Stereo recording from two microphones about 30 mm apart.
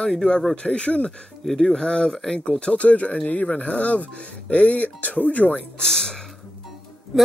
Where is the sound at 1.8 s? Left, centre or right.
Left.